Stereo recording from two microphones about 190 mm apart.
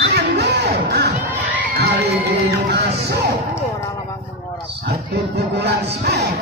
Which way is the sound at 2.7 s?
55° right (ahead or behind).